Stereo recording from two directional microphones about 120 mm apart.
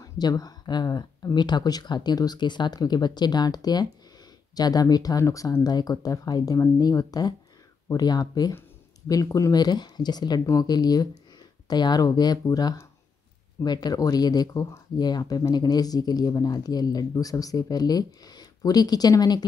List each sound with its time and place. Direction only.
0.0 s speech: 30° left (ahead or behind)